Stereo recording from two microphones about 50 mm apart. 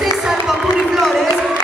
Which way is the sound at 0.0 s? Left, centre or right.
Centre.